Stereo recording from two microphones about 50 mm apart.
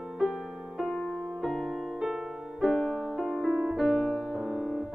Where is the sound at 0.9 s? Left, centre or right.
Centre.